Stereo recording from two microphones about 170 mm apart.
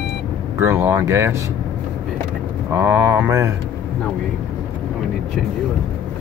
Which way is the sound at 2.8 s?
15° right (ahead or behind).